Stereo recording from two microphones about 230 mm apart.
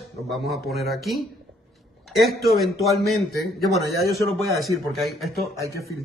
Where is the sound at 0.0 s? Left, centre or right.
Centre.